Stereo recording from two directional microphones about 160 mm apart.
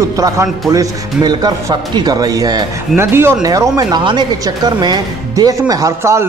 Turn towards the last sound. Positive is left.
turn(degrees=-20)  # may be behind; listen again after turning